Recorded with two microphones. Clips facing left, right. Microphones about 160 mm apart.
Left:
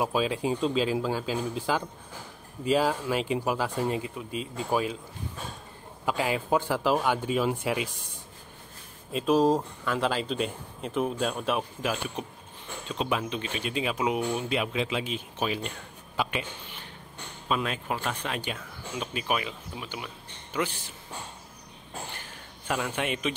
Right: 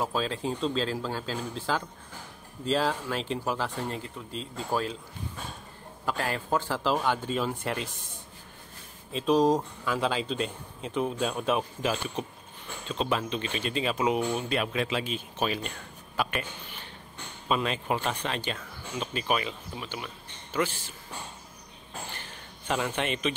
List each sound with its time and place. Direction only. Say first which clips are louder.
0.0 s speech: left 3 dB; 10° left (ahead or behind)
6.0 s speech: left 3 dB; 10° left (ahead or behind)
9.1 s speech: even; 5° left (ahead or behind)
16.2 s a sound: even; 20° left (ahead or behind)
17.5 s speech: right 2 dB; centre (ahead or behind)
22.7 s speech: even; 5° left (ahead or behind)